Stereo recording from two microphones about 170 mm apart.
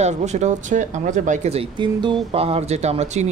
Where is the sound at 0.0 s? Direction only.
40° right (ahead or behind).